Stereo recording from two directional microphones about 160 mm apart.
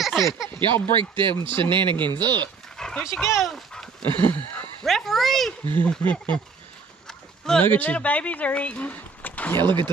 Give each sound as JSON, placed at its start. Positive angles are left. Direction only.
{"t": 0.0, "sound": "a sound", "side_deg": 0}
{"t": 0.5, "sound": "speech", "side_deg": -30}
{"t": 2.8, "sound": "dog", "side_deg": 5}
{"t": 3.3, "sound": "speech", "side_deg": 0}
{"t": 4.0, "sound": "a sound", "side_deg": -30}
{"t": 4.3, "sound": "speech", "side_deg": 10}
{"t": 9.6, "sound": "speech", "side_deg": -30}